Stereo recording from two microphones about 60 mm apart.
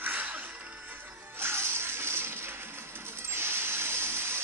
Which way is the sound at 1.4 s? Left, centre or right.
Right.